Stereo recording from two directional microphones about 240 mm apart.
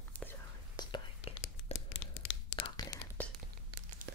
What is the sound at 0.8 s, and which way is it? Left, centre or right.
Whispering, left.